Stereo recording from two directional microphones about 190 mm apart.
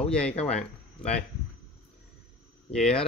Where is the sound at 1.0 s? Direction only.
5° left (ahead or behind).